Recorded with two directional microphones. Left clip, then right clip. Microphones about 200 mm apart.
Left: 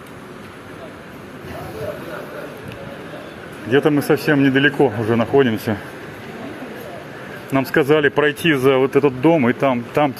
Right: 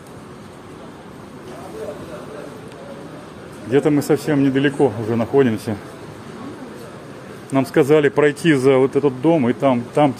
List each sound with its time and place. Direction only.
3.7 s speech: centre (ahead or behind)
7.5 s speech: centre (ahead or behind)